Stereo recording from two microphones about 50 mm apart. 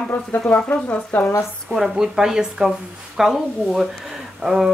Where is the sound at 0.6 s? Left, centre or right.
Left.